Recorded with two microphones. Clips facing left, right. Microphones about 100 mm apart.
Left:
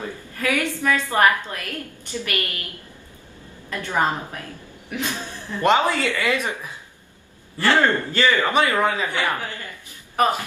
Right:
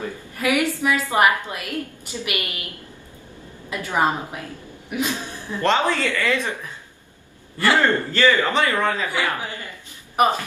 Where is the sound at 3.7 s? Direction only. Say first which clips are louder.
Right 1 dB; 15° right (ahead or behind).